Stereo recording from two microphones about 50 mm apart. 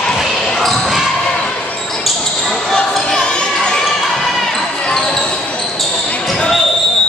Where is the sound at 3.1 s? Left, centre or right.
Centre.